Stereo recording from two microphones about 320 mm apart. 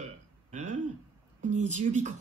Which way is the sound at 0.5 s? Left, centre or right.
Right.